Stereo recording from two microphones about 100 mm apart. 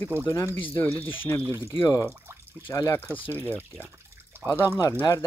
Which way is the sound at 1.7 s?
30° left (ahead or behind).